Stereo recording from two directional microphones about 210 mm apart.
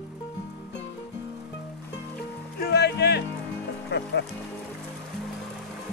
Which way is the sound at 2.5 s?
50° left (ahead or behind).